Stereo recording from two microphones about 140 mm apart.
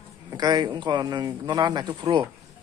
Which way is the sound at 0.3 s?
30° right (ahead or behind).